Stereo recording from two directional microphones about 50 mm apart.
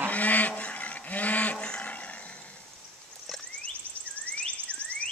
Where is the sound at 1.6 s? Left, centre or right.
Centre.